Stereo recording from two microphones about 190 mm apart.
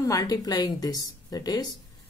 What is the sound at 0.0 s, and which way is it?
Speech, 20° left (ahead or behind).